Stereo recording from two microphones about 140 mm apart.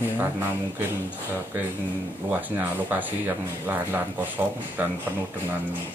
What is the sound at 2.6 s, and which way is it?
A man's voice, 10° right (ahead or behind).